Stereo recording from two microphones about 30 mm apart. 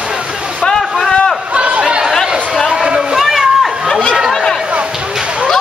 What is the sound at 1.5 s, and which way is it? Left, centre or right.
Chatter, right.